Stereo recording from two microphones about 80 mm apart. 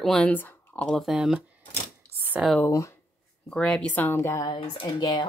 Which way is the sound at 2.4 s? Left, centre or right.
Centre.